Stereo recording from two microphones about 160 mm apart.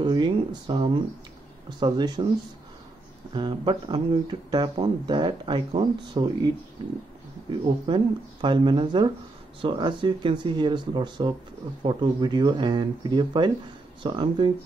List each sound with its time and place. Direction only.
0.0 s speech: 30° right (ahead or behind)
3.3 s speech: 30° right (ahead or behind)
7.8 s speech: 30° right (ahead or behind)